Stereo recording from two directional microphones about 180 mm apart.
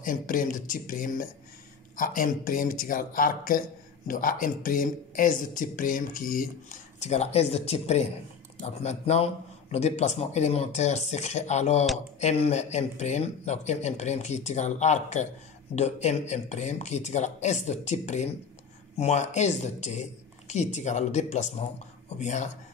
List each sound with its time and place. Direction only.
0.0 s a man's voice: 50° left (ahead or behind)